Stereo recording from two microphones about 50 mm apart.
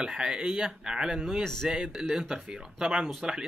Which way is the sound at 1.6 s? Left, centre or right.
Centre.